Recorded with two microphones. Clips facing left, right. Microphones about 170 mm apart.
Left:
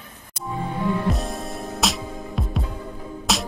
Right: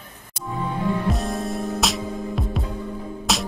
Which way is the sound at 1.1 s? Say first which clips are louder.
Right 4 dB; centre (ahead or behind).